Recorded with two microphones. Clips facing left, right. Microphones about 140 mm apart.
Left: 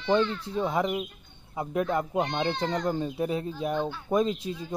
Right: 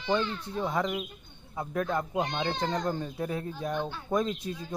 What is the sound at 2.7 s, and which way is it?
A child's voice, 15° left (ahead or behind).